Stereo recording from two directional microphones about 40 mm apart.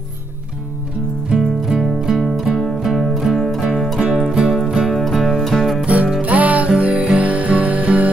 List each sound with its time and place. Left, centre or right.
1.3 s music: centre
4.1 s music: centre
5.0 s music: centre
6.2 s music: right